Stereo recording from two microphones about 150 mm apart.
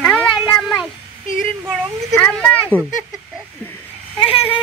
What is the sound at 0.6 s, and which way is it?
Speech, 5° right (ahead or behind).